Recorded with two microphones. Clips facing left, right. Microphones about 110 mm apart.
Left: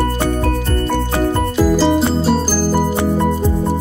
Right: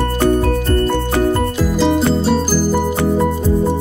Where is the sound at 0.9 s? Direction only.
15° left (ahead or behind).